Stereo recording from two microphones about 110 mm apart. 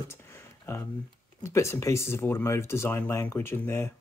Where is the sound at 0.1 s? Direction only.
25° left (ahead or behind).